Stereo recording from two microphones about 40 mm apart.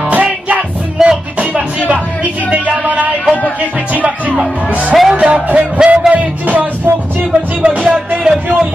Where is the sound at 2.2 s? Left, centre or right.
Right.